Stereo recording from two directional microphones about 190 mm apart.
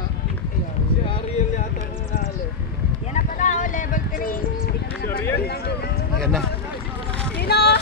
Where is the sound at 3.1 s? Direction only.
40° left (ahead or behind).